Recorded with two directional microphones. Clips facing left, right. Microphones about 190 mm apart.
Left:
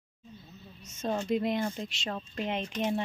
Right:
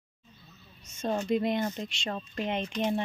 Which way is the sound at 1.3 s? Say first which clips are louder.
Right 1 dB; centre (ahead or behind).